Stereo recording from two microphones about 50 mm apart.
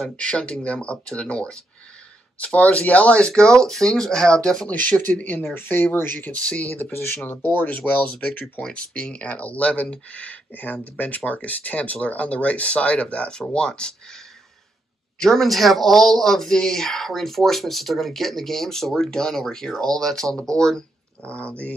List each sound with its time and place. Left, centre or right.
0.1 s speech: left
4.6 s speech: left
6.1 s speech: left
6.9 s speech: left; by 13.9 s centre
15.1 s speech: centre
21.2 s speech: left